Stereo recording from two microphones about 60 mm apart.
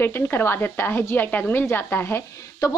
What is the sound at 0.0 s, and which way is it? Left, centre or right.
Speech, left.